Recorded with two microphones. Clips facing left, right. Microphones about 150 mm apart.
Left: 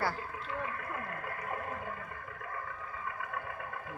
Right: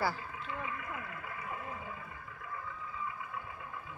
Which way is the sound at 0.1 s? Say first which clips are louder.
Left 2 dB; 45° left (ahead or behind).